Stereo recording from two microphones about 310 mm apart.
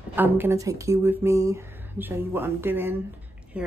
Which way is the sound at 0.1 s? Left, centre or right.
Centre.